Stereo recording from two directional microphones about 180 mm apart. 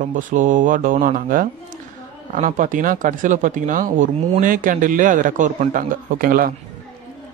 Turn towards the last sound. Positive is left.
turn(degrees=-55)  # may be behind; listen again after turning